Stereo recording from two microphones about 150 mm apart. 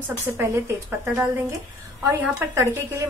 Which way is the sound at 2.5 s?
15° right (ahead or behind).